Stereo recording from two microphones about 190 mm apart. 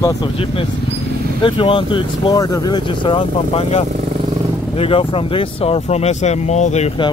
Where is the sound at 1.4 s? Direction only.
25° left (ahead or behind).